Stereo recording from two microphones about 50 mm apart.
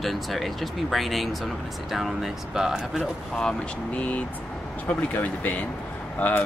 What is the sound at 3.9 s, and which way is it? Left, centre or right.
Speech, left.